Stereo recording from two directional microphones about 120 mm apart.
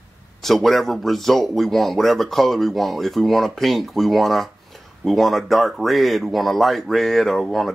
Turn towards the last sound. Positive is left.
turn(degrees=0)  # may be behind; listen again after turning